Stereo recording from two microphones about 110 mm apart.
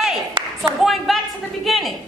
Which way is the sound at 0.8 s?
Centre (ahead or behind).